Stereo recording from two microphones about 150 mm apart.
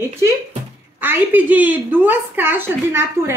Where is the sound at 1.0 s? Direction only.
10° right (ahead or behind).